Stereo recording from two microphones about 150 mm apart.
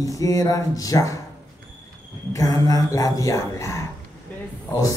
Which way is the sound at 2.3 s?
25° left (ahead or behind).